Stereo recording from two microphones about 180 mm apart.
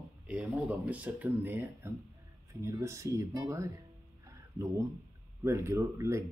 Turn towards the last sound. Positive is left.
turn(degrees=-15)  # may be behind; listen again after turning